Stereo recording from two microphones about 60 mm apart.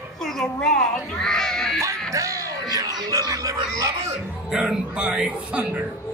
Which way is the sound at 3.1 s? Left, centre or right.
Right.